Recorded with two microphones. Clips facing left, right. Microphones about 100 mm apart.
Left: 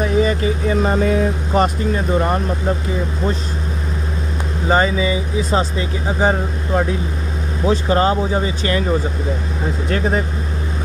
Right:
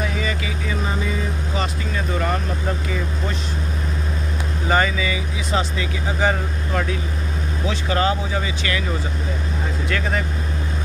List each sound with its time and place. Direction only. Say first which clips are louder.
0.0 s vehicle: left 9 dB; 35° left (ahead or behind)
0.9 s vehicle: left 9 dB; 60° left (ahead or behind)
2.0 s speech: left 4 dB; 30° left (ahead or behind)
4.6 s speech: left 4 dB; 30° left (ahead or behind)
9.8 s speech: left 5 dB; 35° left (ahead or behind)